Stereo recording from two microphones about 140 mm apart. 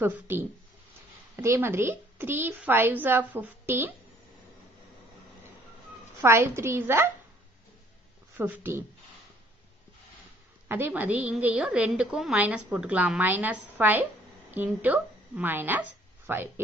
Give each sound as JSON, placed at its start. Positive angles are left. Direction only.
{"t": 0.0, "sound": "a woman's voice", "side_deg": -15}
{"t": 6.2, "sound": "a woman's voice", "side_deg": -20}
{"t": 8.4, "sound": "a woman's voice", "side_deg": -15}
{"t": 10.7, "sound": "a woman's voice", "side_deg": -15}